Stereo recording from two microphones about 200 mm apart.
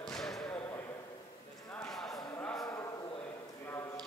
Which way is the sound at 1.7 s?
5° left (ahead or behind).